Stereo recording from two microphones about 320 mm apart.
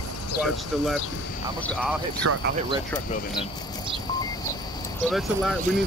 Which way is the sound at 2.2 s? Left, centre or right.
Right.